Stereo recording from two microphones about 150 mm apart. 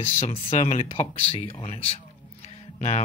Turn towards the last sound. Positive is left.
turn(degrees=50)  # may be behind; listen again after turning